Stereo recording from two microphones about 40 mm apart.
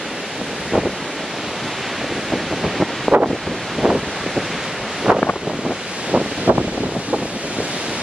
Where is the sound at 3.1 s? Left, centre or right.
Right.